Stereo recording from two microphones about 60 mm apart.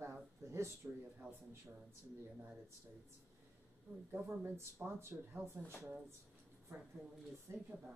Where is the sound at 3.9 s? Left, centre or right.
Right.